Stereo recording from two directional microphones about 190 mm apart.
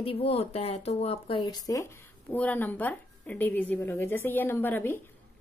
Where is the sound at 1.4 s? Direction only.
20° left (ahead or behind).